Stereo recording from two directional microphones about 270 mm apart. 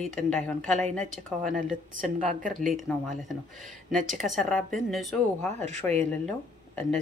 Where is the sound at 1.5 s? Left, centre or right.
Right.